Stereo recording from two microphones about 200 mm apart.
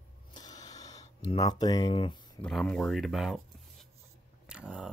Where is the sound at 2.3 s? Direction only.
5° left (ahead or behind).